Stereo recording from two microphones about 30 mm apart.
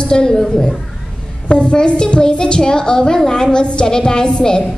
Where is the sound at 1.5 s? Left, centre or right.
Left.